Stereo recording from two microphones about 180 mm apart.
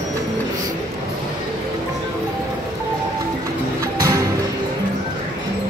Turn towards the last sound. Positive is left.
turn(degrees=-20)  # may be behind; listen again after turning